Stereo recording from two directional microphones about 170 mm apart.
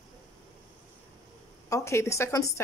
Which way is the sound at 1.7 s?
15° left (ahead or behind).